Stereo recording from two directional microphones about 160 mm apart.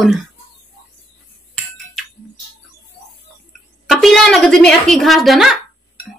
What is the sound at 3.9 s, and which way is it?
Speech, centre (ahead or behind).